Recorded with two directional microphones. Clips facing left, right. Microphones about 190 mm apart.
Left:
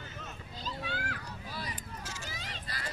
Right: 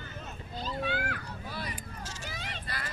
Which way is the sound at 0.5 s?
60° right (ahead or behind).